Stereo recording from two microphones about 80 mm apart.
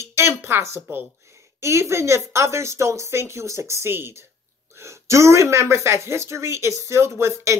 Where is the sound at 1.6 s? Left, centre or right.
Right.